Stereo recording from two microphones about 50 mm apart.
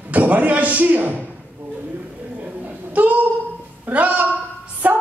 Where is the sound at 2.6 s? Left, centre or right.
Right.